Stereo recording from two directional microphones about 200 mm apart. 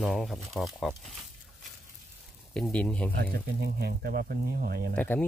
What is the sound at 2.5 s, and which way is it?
Speech, 5° left (ahead or behind).